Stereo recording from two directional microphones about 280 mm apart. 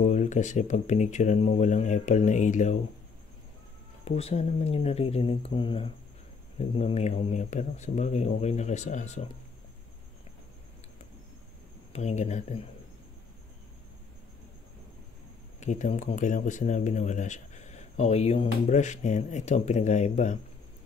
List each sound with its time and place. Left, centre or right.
0.0 s speech: left
4.0 s speech: left
11.9 s speech: left
15.6 s speech: left